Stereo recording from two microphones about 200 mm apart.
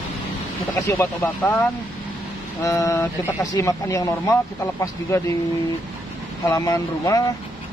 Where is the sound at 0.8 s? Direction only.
10° left (ahead or behind).